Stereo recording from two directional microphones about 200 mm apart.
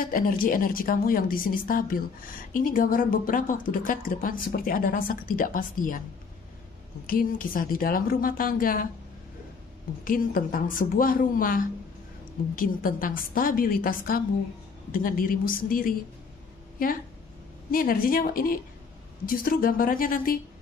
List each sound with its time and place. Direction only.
0.0 s a woman's voice: 45° left (ahead or behind)
7.1 s a woman's voice: 45° left (ahead or behind)
10.0 s a woman's voice: 45° left (ahead or behind)